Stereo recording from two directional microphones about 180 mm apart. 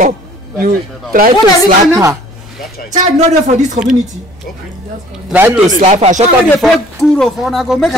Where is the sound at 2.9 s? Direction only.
40° right (ahead or behind).